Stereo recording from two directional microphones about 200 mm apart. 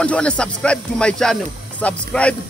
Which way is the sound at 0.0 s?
5° left (ahead or behind).